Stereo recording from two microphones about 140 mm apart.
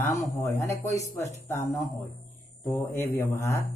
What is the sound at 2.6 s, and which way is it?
A man's voice, 15° left (ahead or behind).